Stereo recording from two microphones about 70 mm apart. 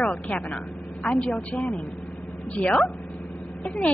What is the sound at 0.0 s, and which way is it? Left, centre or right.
A woman's voice, left.